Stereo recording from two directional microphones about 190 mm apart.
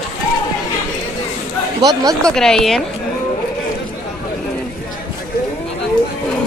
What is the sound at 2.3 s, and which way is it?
Speech, 5° left (ahead or behind).